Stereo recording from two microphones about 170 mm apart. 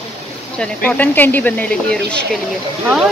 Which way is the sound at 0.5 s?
5° left (ahead or behind).